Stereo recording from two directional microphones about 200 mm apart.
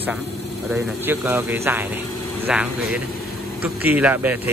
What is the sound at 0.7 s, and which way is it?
Speech, 10° right (ahead or behind).